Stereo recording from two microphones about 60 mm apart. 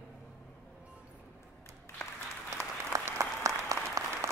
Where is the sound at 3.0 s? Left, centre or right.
Right.